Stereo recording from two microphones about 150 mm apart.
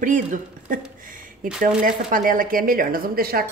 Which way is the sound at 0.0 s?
60° right (ahead or behind).